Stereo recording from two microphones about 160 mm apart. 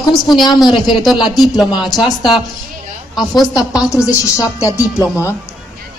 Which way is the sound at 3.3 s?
20° left (ahead or behind).